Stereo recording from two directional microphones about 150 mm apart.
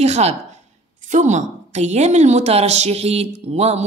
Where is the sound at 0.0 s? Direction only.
45° right (ahead or behind).